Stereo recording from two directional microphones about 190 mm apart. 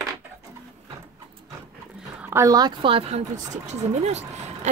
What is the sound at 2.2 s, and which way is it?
Speech, 15° right (ahead or behind).